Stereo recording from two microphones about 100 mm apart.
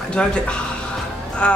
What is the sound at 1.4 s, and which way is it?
Speech, 10° left (ahead or behind).